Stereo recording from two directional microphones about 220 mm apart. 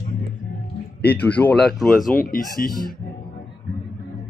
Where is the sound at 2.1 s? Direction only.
40° left (ahead or behind).